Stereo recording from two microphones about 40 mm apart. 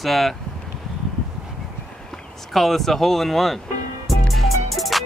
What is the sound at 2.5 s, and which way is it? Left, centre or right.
Speech, centre.